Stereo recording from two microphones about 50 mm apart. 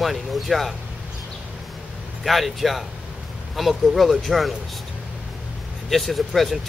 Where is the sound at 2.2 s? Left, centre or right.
Centre.